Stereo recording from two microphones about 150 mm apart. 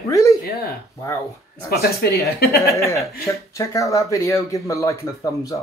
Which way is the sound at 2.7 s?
20° left (ahead or behind).